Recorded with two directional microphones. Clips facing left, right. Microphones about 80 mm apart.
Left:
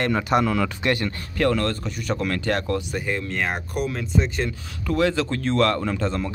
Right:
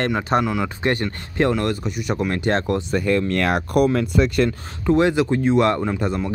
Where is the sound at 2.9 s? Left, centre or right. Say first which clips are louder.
Right 7 dB; right.